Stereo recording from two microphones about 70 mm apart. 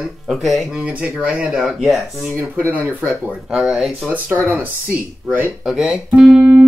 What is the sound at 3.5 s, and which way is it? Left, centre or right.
Speech, centre.